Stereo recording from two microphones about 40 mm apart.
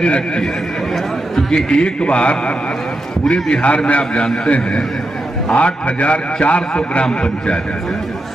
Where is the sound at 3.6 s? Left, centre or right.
Left.